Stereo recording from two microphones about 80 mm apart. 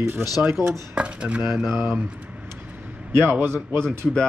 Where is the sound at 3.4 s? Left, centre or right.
Right.